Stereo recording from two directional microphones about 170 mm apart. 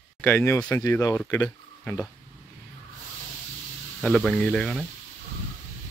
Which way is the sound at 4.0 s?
5° left (ahead or behind).